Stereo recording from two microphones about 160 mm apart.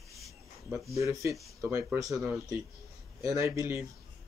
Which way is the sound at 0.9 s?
20° right (ahead or behind).